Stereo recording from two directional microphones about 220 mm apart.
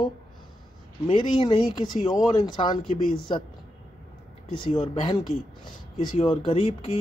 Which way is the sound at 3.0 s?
40° left (ahead or behind).